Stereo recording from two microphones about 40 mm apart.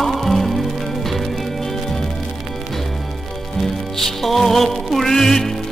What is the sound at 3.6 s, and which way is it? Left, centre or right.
Music, centre.